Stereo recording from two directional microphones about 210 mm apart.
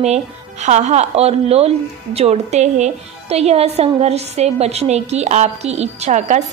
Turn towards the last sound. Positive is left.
turn(degrees=-35)  # may be behind; listen again after turning